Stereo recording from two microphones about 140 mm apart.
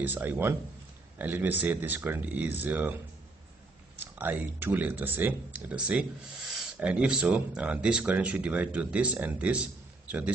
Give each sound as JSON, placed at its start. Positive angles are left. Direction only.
{"t": 0.0, "sound": "speech", "side_deg": -15}
{"t": 4.0, "sound": "speech", "side_deg": -15}